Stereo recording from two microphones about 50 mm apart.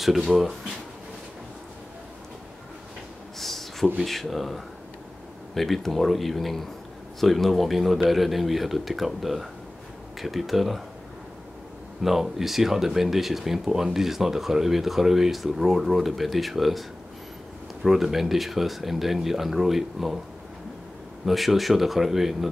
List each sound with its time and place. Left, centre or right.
0.0 s speech: centre
3.3 s a sound: centre
4.0 s speech: centre
12.0 s speech: centre
17.8 s speech: centre
21.3 s speech: centre